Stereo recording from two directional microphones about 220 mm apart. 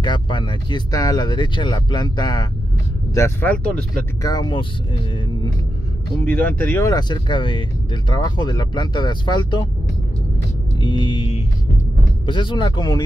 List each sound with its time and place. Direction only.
0.0 s speech: 20° left (ahead or behind)
6.2 s speech: 10° left (ahead or behind)
10.8 s speech: 20° left (ahead or behind)